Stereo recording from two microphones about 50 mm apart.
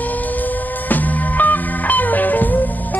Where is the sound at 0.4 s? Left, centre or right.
Left.